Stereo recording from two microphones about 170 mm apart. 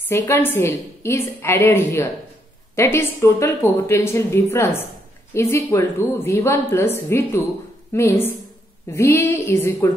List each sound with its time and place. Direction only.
0.1 s a woman's voice: 15° left (ahead or behind)